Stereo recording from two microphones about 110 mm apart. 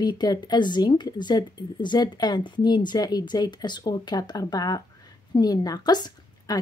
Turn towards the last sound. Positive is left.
turn(degrees=40)  # may be behind; listen again after turning